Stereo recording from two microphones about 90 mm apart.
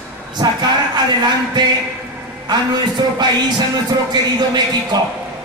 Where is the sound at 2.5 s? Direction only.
50° right (ahead or behind).